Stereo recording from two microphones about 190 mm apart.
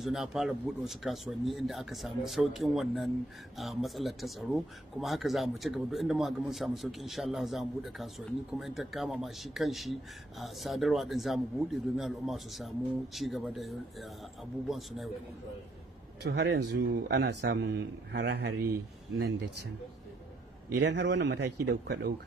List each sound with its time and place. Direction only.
0.0 s speech: centre (ahead or behind)
16.2 s speech: 60° right (ahead or behind)
20.7 s speech: 65° right (ahead or behind)